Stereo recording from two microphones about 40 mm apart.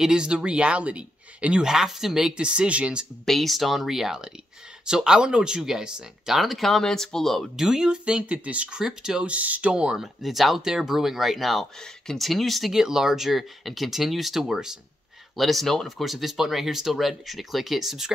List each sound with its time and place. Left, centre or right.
0.0 s speech: centre
1.6 s speech: centre
3.3 s speech: centre
6.8 s speech: centre
7.5 s speech: centre; by 8.7 s right
8.7 s speech: centre
9.2 s speech: right
9.7 s speech: right
9.9 s speech: centre
12.7 s speech: centre
15.3 s speech: centre